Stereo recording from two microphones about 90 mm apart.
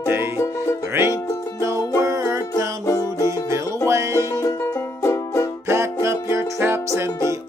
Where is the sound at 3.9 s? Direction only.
30° right (ahead or behind).